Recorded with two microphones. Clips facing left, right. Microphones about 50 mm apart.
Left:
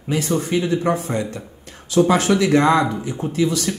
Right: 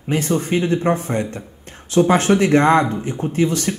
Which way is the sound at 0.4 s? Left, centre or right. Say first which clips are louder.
Right 1 dB; right.